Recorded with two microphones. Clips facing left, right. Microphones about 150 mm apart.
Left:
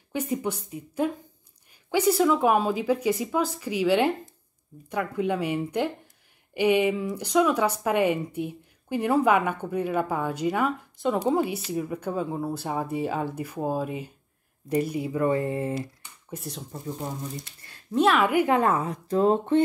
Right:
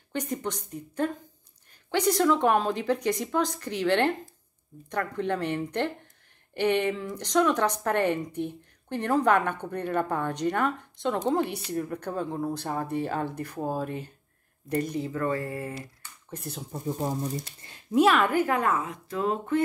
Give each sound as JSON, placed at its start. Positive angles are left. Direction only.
{"t": 0.1, "sound": "speech", "side_deg": 5}
{"t": 16.3, "sound": "speech", "side_deg": 0}
{"t": 17.0, "sound": "speech", "side_deg": -40}
{"t": 17.9, "sound": "a woman's voice", "side_deg": 0}
{"t": 18.3, "sound": "speech", "side_deg": 15}
{"t": 18.6, "sound": "speech", "side_deg": 35}